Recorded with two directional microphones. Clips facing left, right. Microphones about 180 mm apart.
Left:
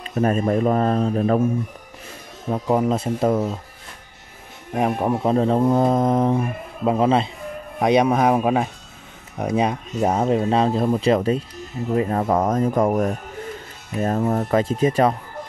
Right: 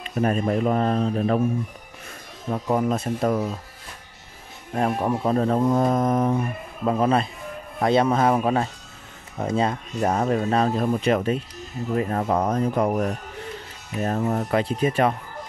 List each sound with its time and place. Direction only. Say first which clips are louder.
0.0 s speech: left 3 dB; 40° left (ahead or behind)
2.5 s speech: left 3 dB; 25° left (ahead or behind)
4.7 s speech: left 2 dB; 20° left (ahead or behind)
11.9 s speech: left 3 dB; 25° left (ahead or behind)
12.2 s speech: left 3 dB; 45° left (ahead or behind)